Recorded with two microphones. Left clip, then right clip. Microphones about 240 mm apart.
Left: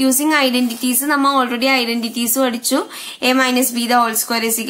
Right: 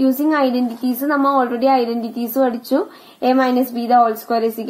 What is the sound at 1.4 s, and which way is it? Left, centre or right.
A woman's voice, left.